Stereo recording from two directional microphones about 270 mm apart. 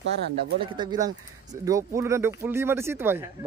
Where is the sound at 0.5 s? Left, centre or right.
Centre.